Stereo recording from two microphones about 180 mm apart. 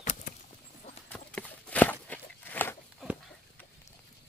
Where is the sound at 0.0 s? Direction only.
45° left (ahead or behind).